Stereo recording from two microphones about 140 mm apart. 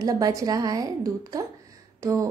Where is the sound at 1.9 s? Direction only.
25° right (ahead or behind).